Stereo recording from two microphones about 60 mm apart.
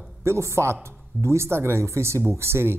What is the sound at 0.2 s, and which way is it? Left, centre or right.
A man's voice, right.